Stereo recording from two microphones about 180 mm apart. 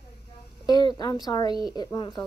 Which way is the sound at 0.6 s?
20° left (ahead or behind).